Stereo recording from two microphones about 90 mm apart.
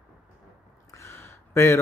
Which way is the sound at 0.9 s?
30° left (ahead or behind).